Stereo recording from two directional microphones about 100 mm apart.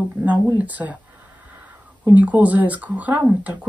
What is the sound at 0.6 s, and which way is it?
Speech, 15° right (ahead or behind).